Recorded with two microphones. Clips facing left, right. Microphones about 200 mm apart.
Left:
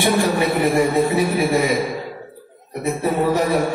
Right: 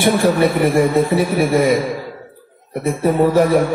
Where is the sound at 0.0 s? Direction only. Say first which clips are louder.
Right 4 dB; 50° right (ahead or behind).